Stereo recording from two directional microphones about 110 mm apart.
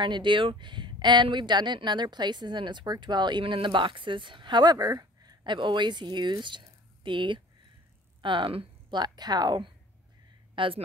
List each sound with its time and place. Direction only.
0.0 s speech: 45° right (ahead or behind)
9.0 s speech: 40° right (ahead or behind)
10.5 s a sound: 50° right (ahead or behind)